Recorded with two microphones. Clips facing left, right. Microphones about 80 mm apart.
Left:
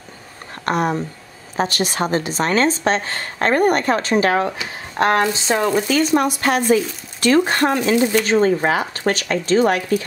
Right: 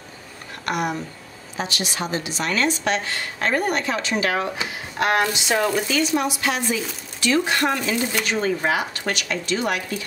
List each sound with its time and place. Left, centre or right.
0.7 s a woman's voice: left
5.9 s a woman's voice: left